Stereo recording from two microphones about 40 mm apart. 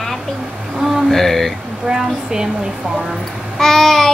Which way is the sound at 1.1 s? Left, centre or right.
Centre.